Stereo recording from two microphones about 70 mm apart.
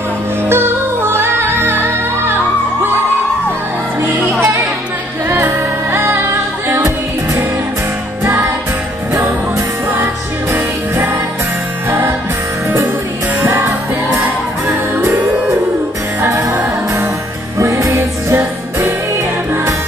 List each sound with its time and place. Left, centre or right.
0.5 s music: right
5.3 s music: right
12.6 s music: right